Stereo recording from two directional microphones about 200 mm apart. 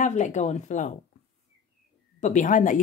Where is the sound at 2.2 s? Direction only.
35° left (ahead or behind).